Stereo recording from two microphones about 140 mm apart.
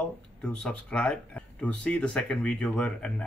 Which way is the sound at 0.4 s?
5° left (ahead or behind).